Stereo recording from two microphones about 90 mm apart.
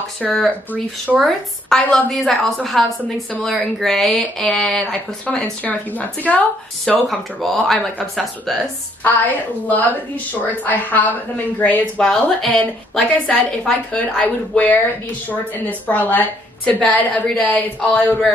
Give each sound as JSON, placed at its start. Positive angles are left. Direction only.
{"t": 0.2, "sound": "speech", "side_deg": 0}
{"t": 1.9, "sound": "speech", "side_deg": 5}
{"t": 5.2, "sound": "a woman's voice", "side_deg": 15}
{"t": 7.1, "sound": "speech", "side_deg": 0}
{"t": 9.0, "sound": "a woman's voice", "side_deg": 20}
{"t": 12.0, "sound": "a woman's voice", "side_deg": 5}